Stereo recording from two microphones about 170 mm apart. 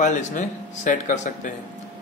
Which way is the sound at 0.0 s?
50° left (ahead or behind).